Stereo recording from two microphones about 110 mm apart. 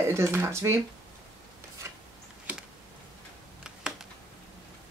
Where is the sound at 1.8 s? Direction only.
25° right (ahead or behind).